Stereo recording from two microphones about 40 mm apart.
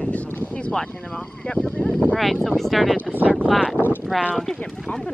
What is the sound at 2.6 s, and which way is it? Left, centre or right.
Speech, centre.